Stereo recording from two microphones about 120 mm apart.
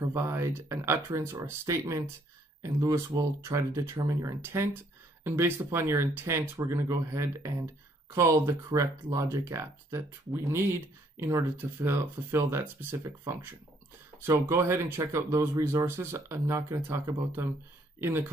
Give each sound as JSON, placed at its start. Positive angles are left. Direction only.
{"t": 0.0, "sound": "speech", "side_deg": -20}
{"t": 3.1, "sound": "speech", "side_deg": -30}
{"t": 13.0, "sound": "speech", "side_deg": -30}